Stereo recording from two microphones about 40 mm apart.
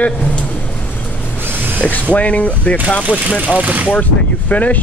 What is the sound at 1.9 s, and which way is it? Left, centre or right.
Speech, left.